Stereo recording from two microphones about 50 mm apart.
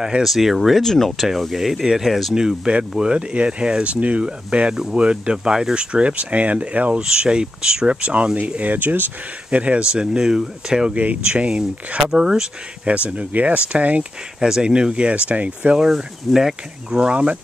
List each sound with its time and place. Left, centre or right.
0.0 s speech: centre
2.3 s speech: centre
8.7 s speech: right
9.5 s speech: right
10.9 s speech: right
12.0 s speech: centre
12.8 s speech: right; by 17.1 s centre
17.1 s speech: right